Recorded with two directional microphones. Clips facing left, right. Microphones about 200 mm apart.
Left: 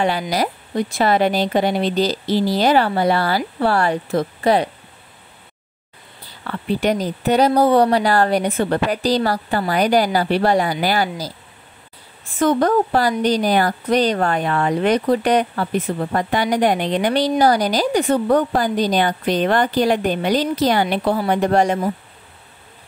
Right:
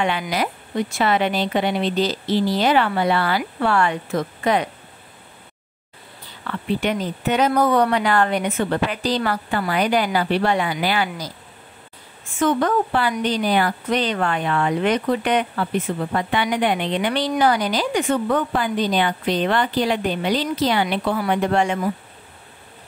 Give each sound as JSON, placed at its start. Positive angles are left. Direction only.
{"t": 0.0, "sound": "speech", "side_deg": 35}
{"t": 6.4, "sound": "speech", "side_deg": 40}
{"t": 12.4, "sound": "speech", "side_deg": 35}